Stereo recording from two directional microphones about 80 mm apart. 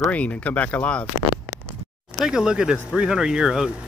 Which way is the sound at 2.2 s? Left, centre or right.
Centre.